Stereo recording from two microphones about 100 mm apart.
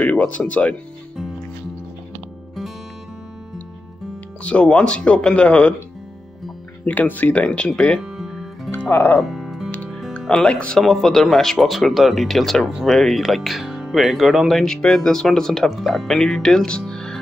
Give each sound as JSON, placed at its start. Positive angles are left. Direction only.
{"t": 0.0, "sound": "speech", "side_deg": 15}
{"t": 4.4, "sound": "speech", "side_deg": 10}
{"t": 6.9, "sound": "speech", "side_deg": 15}
{"t": 8.0, "sound": "music", "side_deg": -5}
{"t": 8.9, "sound": "speech", "side_deg": 20}
{"t": 9.2, "sound": "music", "side_deg": 0}
{"t": 9.7, "sound": "music", "side_deg": 15}
{"t": 10.1, "sound": "speech", "side_deg": 5}